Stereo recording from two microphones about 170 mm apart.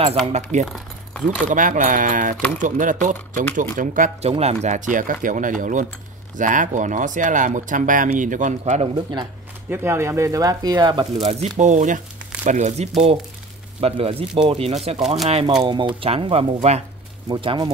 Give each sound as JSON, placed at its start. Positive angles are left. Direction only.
{"t": 0.3, "sound": "speech", "side_deg": -40}
{"t": 0.7, "sound": "speech", "side_deg": 0}
{"t": 1.5, "sound": "speech", "side_deg": -50}
{"t": 4.3, "sound": "speech", "side_deg": -40}
{"t": 9.7, "sound": "speech", "side_deg": -15}